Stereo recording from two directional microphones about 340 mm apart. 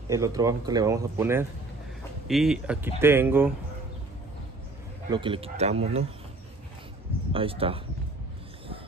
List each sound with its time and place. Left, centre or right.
0.1 s speech: centre
5.1 s speech: centre
7.3 s speech: centre